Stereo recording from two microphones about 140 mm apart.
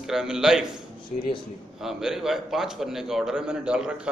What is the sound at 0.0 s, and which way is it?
Speech, 5° right (ahead or behind).